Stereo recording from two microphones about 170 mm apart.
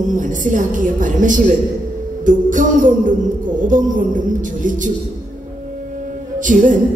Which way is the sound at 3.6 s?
50° right (ahead or behind).